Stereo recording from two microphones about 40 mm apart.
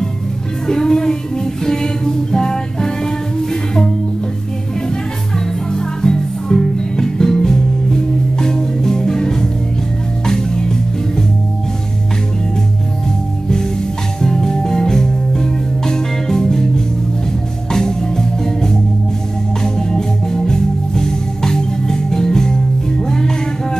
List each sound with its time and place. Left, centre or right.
0.7 s child singing: centre
5.7 s music: centre
14.2 s music: centre
19.6 s organ: centre